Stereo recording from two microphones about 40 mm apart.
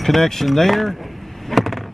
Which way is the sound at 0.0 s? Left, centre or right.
Centre.